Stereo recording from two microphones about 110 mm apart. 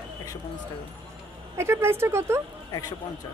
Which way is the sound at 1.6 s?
25° right (ahead or behind).